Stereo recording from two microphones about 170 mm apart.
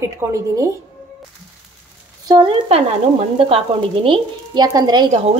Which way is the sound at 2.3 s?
30° right (ahead or behind).